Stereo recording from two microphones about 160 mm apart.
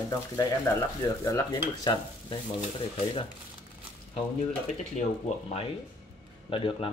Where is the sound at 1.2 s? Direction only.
20° left (ahead or behind).